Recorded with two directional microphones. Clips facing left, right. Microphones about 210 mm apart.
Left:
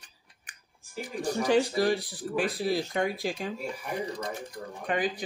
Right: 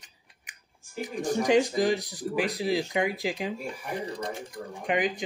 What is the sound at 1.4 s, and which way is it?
Speech, 20° right (ahead or behind).